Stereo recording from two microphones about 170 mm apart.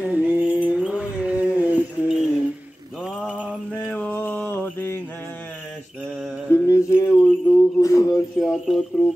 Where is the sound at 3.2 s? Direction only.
10° right (ahead or behind).